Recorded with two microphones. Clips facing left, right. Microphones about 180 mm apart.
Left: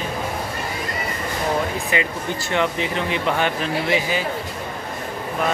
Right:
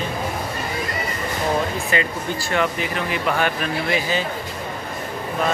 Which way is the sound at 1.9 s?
20° left (ahead or behind).